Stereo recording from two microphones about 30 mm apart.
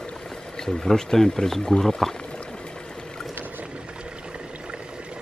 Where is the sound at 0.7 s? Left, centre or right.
Left.